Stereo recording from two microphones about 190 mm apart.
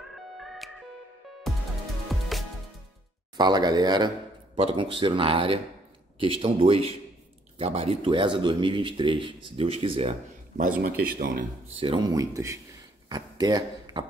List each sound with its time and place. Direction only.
0.4 s music: centre (ahead or behind)
3.3 s speech: 20° right (ahead or behind)
11.1 s speech: 45° right (ahead or behind)
11.8 s speech: 25° right (ahead or behind)